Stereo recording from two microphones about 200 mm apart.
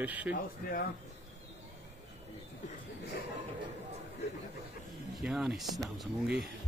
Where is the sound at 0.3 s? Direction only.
50° left (ahead or behind).